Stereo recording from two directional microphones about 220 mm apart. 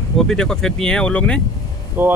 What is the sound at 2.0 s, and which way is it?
Speech, 10° right (ahead or behind).